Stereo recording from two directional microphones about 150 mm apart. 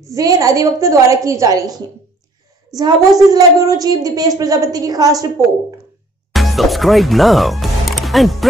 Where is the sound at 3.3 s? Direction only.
25° right (ahead or behind).